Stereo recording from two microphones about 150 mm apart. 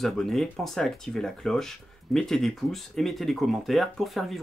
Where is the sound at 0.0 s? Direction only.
Centre (ahead or behind).